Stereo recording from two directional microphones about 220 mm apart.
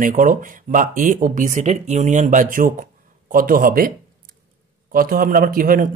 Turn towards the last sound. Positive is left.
turn(degrees=-40)  # may be behind; listen again after turning